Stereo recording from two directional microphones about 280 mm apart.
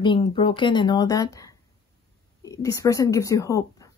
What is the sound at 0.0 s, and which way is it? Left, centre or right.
A woman's voice, centre.